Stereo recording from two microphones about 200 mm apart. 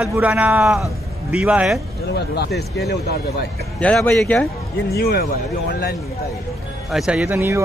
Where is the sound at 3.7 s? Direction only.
5° left (ahead or behind).